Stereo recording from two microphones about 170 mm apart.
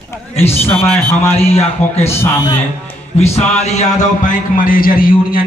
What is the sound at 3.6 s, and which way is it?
A man's voice, 45° left (ahead or behind).